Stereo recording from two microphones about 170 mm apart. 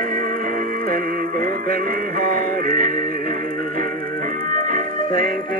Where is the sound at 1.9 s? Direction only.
60° right (ahead or behind).